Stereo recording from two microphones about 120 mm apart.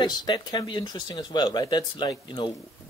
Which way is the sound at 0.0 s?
35° left (ahead or behind).